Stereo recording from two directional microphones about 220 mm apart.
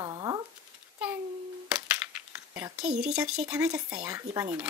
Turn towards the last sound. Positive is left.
turn(degrees=-10)  # may be behind; listen again after turning